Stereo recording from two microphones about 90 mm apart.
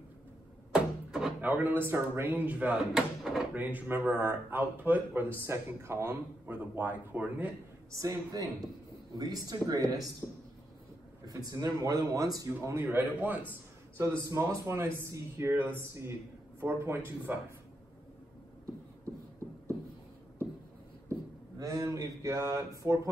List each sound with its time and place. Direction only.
0.7 s a sound: 10° right (ahead or behind)
1.5 s a man's voice: 20° right (ahead or behind)
2.8 s speech: 5° right (ahead or behind)
3.5 s a man's voice: 20° right (ahead or behind)
7.9 s speech: 35° right (ahead or behind)
11.2 s speech: 45° right (ahead or behind)
12.8 s a man's voice: 20° right (ahead or behind)
21.5 s speech: 40° right (ahead or behind)